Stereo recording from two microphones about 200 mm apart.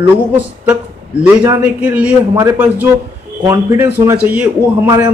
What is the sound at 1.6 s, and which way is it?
Speech, 5° right (ahead or behind).